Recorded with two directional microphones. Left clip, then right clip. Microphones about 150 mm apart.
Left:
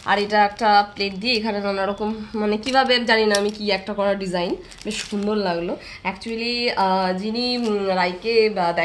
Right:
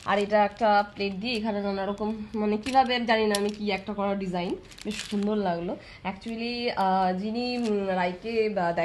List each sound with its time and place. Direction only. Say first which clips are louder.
0.0 s a woman's voice: left 5 dB; 45° right (ahead or behind)